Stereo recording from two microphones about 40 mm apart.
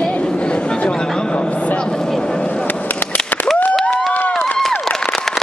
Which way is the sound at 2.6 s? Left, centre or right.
Left.